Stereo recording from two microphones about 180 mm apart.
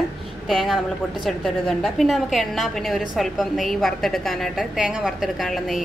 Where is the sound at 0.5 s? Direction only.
Centre (ahead or behind).